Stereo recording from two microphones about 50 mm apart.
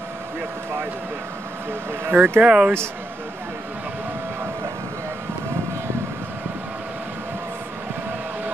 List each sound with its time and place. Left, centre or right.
1.7 s speech: right
2.4 s speech: centre